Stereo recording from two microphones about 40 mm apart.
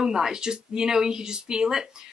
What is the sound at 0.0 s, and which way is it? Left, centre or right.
Speech, centre.